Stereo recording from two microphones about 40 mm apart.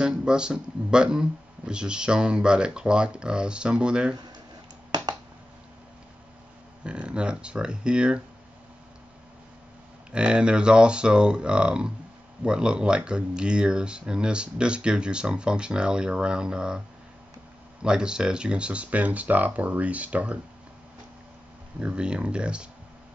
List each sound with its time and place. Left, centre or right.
0.0 s speech: right
6.8 s speech: right
10.1 s speech: right
17.8 s speech: right
21.7 s speech: right